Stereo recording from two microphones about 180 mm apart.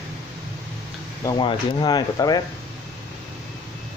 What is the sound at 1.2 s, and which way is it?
Speech, 25° left (ahead or behind).